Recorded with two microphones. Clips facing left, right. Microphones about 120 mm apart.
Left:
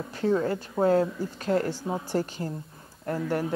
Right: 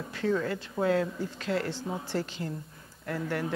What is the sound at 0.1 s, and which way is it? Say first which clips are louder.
Speech: left 4 dB; 30° left (ahead or behind).